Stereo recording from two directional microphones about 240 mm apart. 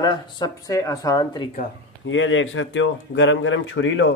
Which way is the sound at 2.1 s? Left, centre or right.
Left.